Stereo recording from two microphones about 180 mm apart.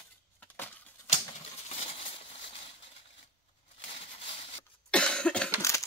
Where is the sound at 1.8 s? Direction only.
30° left (ahead or behind).